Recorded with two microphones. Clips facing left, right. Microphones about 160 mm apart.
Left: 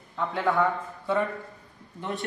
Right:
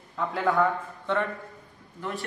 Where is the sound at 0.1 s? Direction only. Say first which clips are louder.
Even; centre (ahead or behind).